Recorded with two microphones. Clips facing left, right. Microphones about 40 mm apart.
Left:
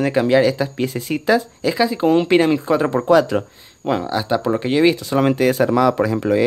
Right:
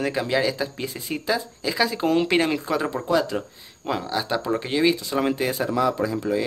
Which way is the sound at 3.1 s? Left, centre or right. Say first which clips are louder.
Left 8 dB; left.